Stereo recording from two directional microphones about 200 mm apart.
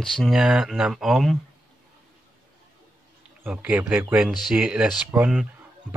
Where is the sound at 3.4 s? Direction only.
10° right (ahead or behind).